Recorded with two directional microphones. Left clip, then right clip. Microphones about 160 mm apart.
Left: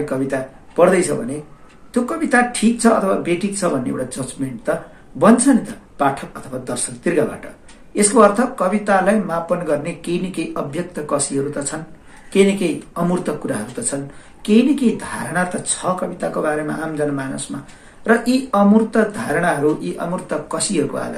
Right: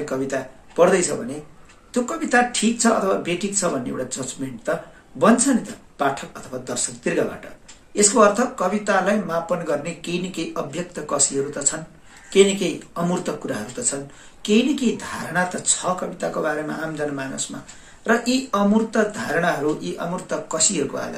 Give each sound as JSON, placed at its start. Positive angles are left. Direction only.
{"t": 0.0, "sound": "speech", "side_deg": -10}
{"t": 5.5, "sound": "speech", "side_deg": -10}